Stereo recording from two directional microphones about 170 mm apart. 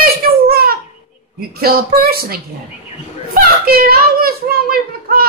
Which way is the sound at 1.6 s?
60° right (ahead or behind).